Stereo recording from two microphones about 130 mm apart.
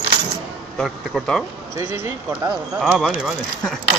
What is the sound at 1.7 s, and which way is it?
Speech, 25° right (ahead or behind).